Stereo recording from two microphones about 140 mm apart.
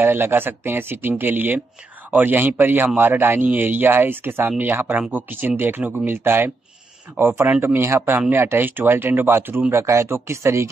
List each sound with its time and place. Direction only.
0.0 s speech: 15° right (ahead or behind)